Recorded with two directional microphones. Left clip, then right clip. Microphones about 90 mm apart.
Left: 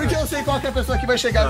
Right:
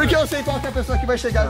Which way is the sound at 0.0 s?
20° right (ahead or behind).